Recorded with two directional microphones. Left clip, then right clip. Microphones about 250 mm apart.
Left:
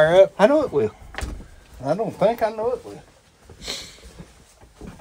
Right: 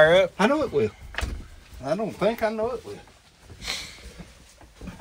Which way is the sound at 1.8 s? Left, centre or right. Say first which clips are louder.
Left 5 dB; left.